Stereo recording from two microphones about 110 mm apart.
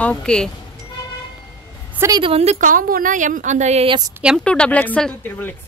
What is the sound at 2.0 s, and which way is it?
Speech, 20° right (ahead or behind).